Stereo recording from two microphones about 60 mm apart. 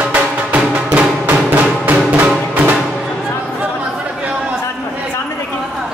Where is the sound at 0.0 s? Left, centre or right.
Right.